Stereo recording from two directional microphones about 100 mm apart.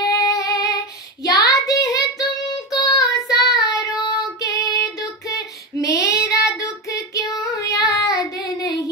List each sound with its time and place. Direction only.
0.1 s female singing: 35° left (ahead or behind)
1.3 s child singing: 35° left (ahead or behind)